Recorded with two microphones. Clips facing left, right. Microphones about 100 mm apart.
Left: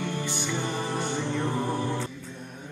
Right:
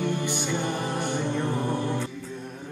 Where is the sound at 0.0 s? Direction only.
20° right (ahead or behind).